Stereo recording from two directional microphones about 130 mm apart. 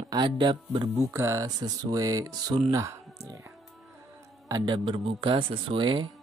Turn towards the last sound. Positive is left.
turn(degrees=-40)  # may be behind; listen again after turning